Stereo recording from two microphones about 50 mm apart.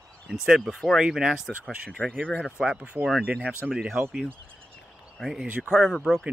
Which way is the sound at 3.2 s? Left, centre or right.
Right.